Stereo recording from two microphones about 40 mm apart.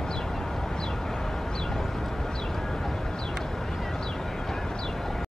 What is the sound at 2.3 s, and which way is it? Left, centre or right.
Vehicle, centre.